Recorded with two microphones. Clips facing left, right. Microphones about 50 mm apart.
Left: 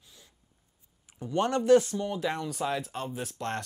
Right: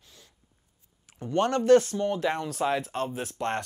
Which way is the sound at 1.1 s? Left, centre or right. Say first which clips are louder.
Right 2 dB; right.